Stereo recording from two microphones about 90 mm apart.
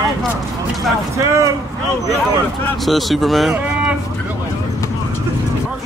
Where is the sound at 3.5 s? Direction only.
15° right (ahead or behind).